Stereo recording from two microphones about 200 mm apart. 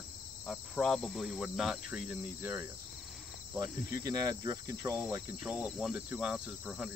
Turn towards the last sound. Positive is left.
turn(degrees=0)  # may be behind; listen again after turning